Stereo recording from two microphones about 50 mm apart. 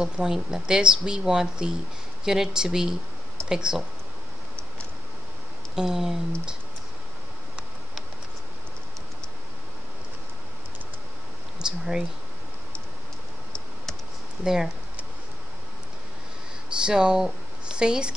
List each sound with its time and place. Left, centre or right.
0.0 s speech: centre
5.8 s speech: centre
11.6 s speech: centre
14.4 s speech: centre
16.8 s speech: centre